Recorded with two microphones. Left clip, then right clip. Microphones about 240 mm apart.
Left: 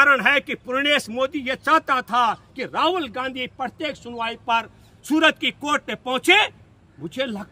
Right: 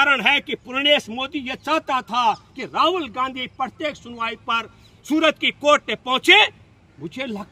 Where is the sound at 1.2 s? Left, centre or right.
Left.